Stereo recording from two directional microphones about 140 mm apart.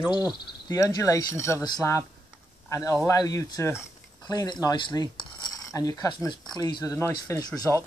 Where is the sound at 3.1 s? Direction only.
25° left (ahead or behind).